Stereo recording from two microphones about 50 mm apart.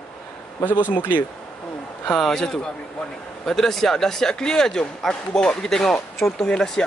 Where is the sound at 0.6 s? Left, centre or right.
Left.